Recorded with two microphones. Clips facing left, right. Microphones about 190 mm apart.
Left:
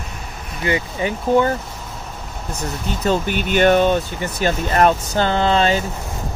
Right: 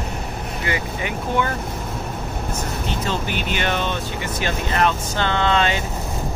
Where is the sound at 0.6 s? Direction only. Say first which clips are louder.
Left 6 dB; 30° left (ahead or behind).